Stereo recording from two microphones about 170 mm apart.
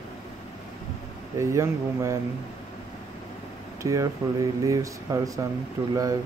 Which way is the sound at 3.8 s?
20° right (ahead or behind).